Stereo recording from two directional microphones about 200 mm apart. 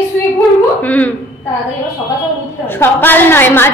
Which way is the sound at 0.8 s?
10° left (ahead or behind).